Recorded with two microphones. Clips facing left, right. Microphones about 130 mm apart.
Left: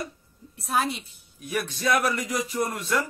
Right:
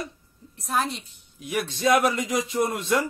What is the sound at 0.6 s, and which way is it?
Speech, 5° left (ahead or behind).